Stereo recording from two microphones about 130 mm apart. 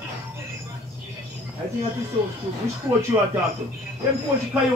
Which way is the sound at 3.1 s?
15° right (ahead or behind).